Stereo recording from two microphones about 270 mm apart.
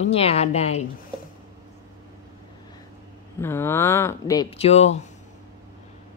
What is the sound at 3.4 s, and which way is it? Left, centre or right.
Speech, centre.